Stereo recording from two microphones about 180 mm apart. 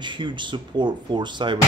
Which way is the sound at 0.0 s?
25° right (ahead or behind).